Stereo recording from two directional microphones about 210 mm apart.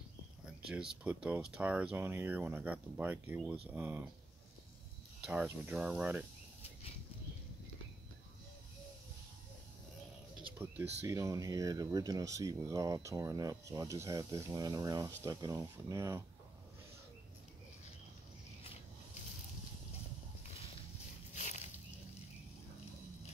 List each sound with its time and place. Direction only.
0.7 s speech: 5° right (ahead or behind)
5.2 s speech: 5° right (ahead or behind)
10.6 s speech: 10° right (ahead or behind)
21.4 s a sound: 35° left (ahead or behind)